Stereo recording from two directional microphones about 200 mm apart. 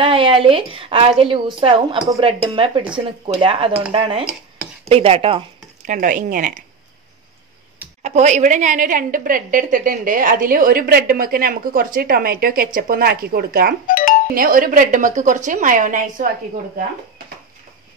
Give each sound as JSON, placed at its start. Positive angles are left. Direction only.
{"t": 0.0, "sound": "a woman's voice", "side_deg": -25}
{"t": 5.9, "sound": "a woman's voice", "side_deg": -40}
{"t": 8.0, "sound": "a woman's voice", "side_deg": -35}
{"t": 13.8, "sound": "music", "side_deg": 45}
{"t": 14.3, "sound": "a woman's voice", "side_deg": -45}